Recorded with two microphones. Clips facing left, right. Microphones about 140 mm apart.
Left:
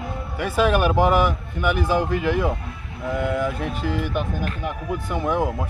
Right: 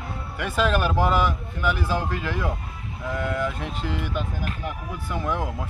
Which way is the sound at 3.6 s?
50° left (ahead or behind).